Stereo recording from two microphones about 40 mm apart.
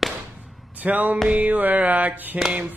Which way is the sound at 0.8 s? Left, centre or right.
Right.